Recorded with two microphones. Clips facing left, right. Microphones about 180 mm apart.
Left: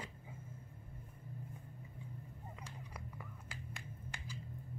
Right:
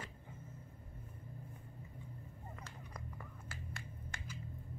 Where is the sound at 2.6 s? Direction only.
10° left (ahead or behind).